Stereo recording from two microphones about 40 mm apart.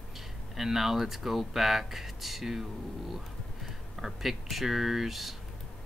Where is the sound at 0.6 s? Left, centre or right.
Centre.